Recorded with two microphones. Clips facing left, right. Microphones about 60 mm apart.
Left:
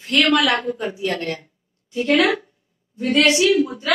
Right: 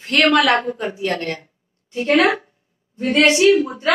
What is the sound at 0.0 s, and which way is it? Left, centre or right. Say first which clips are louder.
A woman's voice: right 2 dB; right.